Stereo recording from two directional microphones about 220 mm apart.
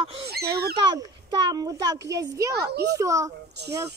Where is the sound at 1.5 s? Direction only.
15° right (ahead or behind).